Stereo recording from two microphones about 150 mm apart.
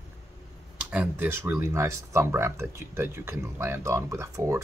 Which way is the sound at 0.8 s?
10° right (ahead or behind).